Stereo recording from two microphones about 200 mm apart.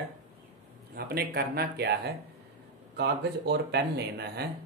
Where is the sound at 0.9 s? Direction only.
50° right (ahead or behind).